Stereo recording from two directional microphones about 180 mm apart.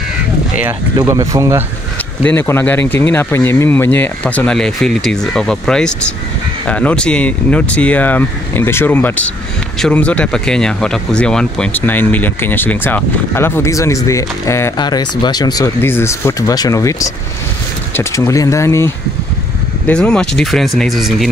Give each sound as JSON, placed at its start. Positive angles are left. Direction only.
{"t": 0.7, "sound": "speech", "side_deg": -15}
{"t": 2.2, "sound": "speech", "side_deg": 10}
{"t": 19.9, "sound": "speech", "side_deg": 5}